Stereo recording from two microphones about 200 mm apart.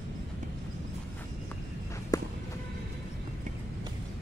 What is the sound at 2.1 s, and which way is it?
Music, 20° left (ahead or behind).